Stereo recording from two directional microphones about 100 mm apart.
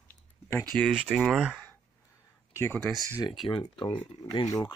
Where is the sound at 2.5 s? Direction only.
30° left (ahead or behind).